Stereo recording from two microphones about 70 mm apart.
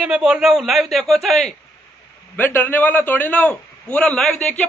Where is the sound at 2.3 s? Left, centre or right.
Left.